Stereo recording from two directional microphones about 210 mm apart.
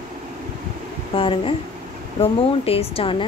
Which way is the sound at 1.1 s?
25° left (ahead or behind).